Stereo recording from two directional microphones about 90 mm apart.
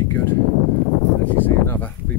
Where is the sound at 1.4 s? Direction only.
25° left (ahead or behind).